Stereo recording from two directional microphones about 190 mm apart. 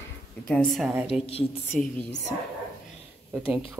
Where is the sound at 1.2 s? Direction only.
30° left (ahead or behind).